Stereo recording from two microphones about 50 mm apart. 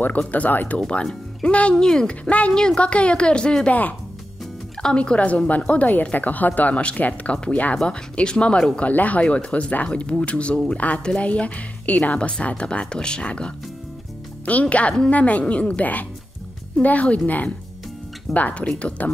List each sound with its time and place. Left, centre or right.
0.3 s a woman's voice: left
0.7 s speech: centre
4.8 s speech: centre
5.9 s a woman's voice: left; by 8.8 s centre
8.8 s speech: left
18.3 s speech: left